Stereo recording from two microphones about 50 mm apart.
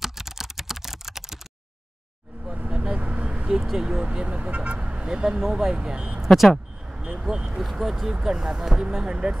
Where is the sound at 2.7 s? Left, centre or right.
Centre.